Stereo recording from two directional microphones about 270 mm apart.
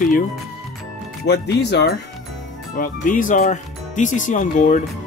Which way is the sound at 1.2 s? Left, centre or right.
Left.